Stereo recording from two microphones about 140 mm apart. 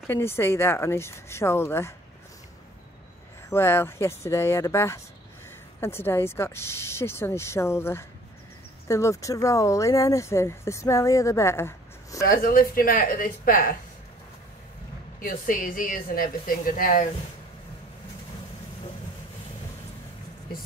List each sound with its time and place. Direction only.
0.0 s speech: 15° left (ahead or behind)
3.4 s speech: 15° left (ahead or behind)
12.3 s a woman's voice: 90° left
15.1 s speech: 85° left